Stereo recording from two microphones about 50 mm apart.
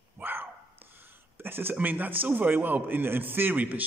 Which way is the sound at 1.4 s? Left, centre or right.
Right.